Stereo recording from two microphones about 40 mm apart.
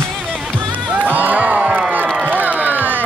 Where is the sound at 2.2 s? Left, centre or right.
Right.